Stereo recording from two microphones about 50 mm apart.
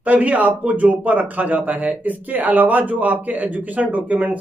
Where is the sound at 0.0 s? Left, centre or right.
Right.